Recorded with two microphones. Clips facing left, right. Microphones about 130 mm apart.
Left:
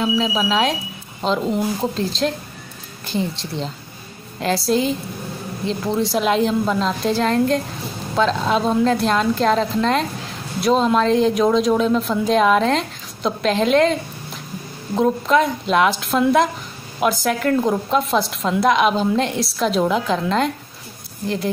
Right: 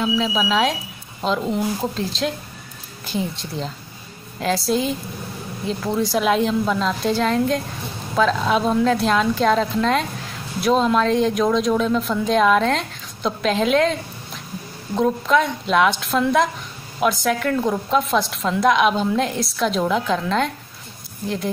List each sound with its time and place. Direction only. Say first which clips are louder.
0.2 s speech: left 1 dB; centre (ahead or behind)
15.0 s speech: left 2 dB; centre (ahead or behind)